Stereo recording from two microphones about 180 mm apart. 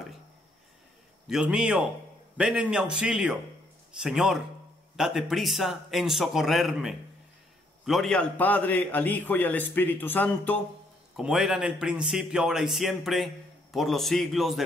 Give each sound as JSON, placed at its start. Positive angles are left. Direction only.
{"t": 1.2, "sound": "a man's voice", "side_deg": -5}
{"t": 11.1, "sound": "a man's voice", "side_deg": -5}